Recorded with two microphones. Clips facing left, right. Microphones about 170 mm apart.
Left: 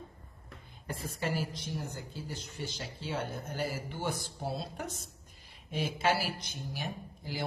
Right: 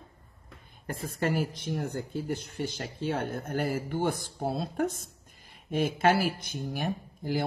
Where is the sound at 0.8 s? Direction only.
50° right (ahead or behind).